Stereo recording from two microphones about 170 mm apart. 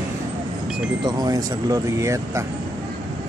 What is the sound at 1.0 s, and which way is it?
Speech, 25° right (ahead or behind).